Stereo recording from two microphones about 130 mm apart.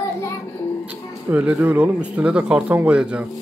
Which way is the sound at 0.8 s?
15° right (ahead or behind).